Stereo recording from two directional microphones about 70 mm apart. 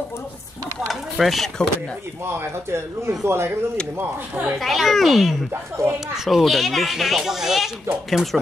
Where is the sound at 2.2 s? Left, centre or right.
Right.